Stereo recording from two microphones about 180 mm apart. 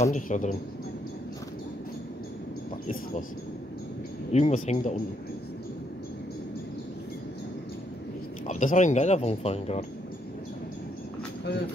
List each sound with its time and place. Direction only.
0.0 s speech: 45° left (ahead or behind)
4.3 s speech: 40° left (ahead or behind)
8.5 s speech: 40° left (ahead or behind)